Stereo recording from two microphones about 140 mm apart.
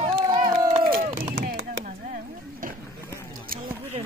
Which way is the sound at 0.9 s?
90° right.